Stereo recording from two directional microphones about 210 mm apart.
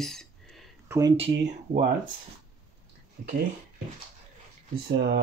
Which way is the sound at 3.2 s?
45° right (ahead or behind).